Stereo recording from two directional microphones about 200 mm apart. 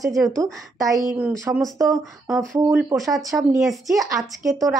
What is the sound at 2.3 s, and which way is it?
Speech, 5° right (ahead or behind).